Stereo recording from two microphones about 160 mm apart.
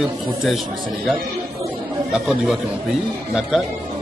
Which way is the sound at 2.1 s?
Centre (ahead or behind).